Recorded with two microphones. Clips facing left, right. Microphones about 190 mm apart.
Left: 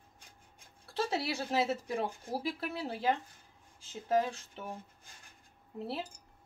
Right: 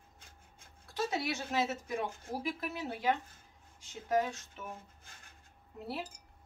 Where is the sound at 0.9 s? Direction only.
30° left (ahead or behind).